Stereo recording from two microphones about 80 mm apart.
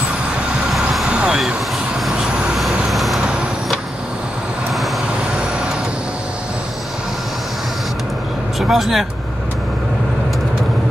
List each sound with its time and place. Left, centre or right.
1.0 s vehicle: centre
8.5 s speech: centre